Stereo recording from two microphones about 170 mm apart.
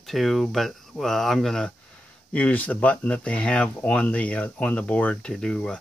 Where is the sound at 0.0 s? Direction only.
Centre (ahead or behind).